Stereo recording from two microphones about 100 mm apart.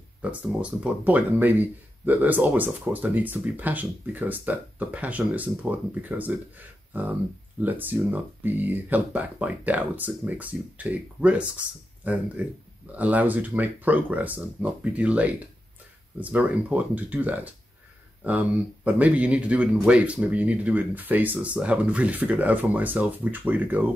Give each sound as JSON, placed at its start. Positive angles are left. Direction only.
{"t": 0.2, "sound": "speech", "side_deg": -15}
{"t": 18.9, "sound": "speech", "side_deg": -15}